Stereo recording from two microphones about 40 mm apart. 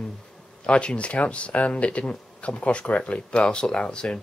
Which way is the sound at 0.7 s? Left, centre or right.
Left.